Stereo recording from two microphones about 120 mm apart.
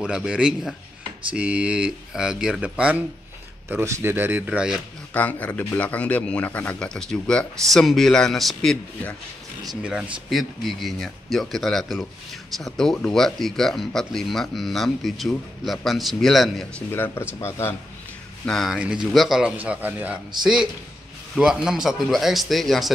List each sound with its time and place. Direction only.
0.0 s speech: 5° right (ahead or behind)
3.6 s speech: 20° right (ahead or behind)
5.1 s speech: 15° left (ahead or behind)
9.8 s speech: 5° right (ahead or behind)
16.9 s speech: 20° left (ahead or behind)
18.4 s speech: 5° left (ahead or behind)
18.8 s speech: 5° right (ahead or behind)
19.5 s speech: 15° right (ahead or behind)
21.4 s speech: 5° right (ahead or behind)